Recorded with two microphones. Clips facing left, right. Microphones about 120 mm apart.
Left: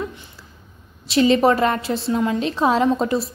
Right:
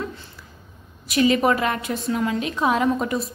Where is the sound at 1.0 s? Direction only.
30° left (ahead or behind).